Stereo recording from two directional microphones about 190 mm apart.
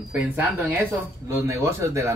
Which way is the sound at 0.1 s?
10° right (ahead or behind).